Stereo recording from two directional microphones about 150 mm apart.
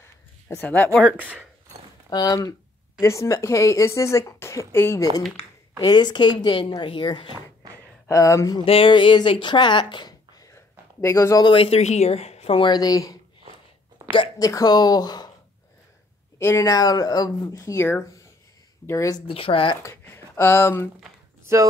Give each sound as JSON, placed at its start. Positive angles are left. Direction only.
{"t": 0.5, "sound": "speech", "side_deg": 10}
{"t": 2.0, "sound": "speech", "side_deg": 25}
{"t": 5.8, "sound": "speech", "side_deg": 30}
{"t": 8.1, "sound": "speech", "side_deg": 20}
{"t": 8.5, "sound": "speech", "side_deg": 35}
{"t": 11.5, "sound": "speech", "side_deg": 40}
{"t": 16.3, "sound": "speech", "side_deg": 20}
{"t": 19.2, "sound": "speech", "side_deg": 35}
{"t": 19.8, "sound": "speech", "side_deg": 15}
{"t": 21.5, "sound": "speech", "side_deg": -15}